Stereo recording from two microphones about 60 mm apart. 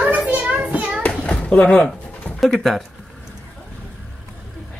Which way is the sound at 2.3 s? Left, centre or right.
Centre.